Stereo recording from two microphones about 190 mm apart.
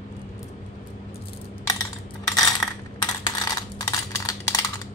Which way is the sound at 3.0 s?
20° left (ahead or behind).